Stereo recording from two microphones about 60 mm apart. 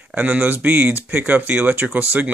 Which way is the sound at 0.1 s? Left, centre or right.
Right.